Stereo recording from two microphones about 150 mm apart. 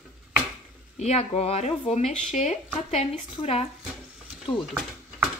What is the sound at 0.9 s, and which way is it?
Speech, 45° left (ahead or behind).